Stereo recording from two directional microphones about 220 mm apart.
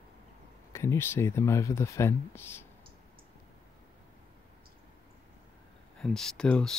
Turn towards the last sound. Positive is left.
turn(degrees=5)  # may be behind; listen again after turning